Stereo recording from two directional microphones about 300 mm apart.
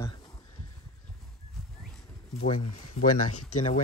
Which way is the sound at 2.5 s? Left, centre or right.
Left.